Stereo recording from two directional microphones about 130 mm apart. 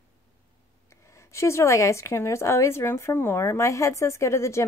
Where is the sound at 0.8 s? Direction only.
20° left (ahead or behind).